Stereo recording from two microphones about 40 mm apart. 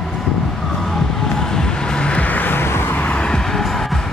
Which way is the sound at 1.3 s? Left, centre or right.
Centre.